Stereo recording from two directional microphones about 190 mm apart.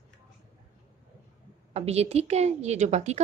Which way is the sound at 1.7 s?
35° right (ahead or behind).